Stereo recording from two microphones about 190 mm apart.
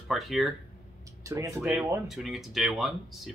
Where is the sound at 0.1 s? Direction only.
Centre (ahead or behind).